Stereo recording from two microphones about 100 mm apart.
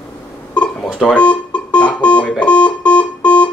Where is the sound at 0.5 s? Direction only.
10° left (ahead or behind).